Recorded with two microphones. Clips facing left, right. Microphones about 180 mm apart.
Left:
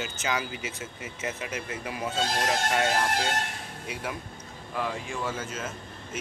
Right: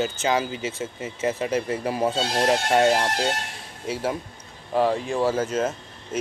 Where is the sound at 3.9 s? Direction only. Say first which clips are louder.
Right 9 dB; 30° right (ahead or behind).